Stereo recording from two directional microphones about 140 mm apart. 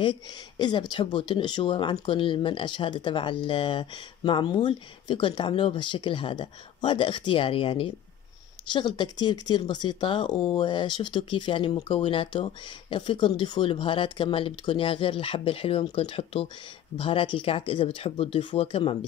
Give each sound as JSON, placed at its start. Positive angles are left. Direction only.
{"t": 0.0, "sound": "speech", "side_deg": 30}